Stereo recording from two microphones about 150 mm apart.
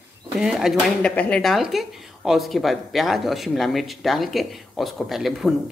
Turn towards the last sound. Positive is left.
turn(degrees=0)  # may be behind; listen again after turning